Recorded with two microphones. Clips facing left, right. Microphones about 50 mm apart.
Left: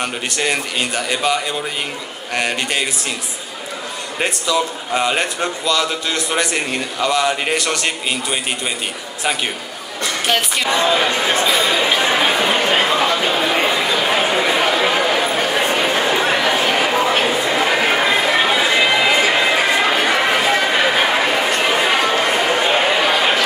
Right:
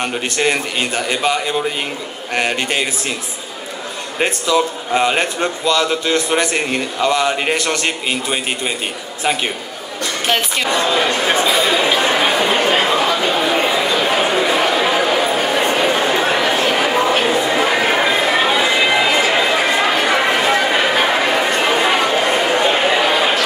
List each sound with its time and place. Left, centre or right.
5.7 s a man's voice: right
7.5 s a man's voice: right
11.2 s chatter: centre